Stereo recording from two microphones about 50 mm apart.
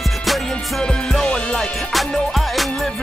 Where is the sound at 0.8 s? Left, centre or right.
Centre.